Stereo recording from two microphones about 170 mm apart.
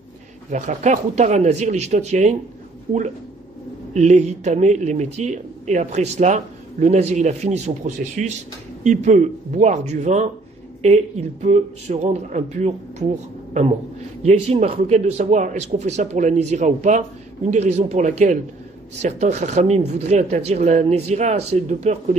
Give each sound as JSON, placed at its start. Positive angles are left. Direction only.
{"t": 0.5, "sound": "speech", "side_deg": -45}
{"t": 3.9, "sound": "a man's voice", "side_deg": -45}